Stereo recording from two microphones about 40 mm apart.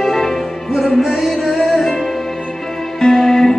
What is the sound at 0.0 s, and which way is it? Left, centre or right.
Music, centre.